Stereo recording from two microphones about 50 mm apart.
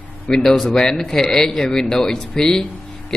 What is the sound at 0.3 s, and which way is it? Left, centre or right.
A man's voice, centre.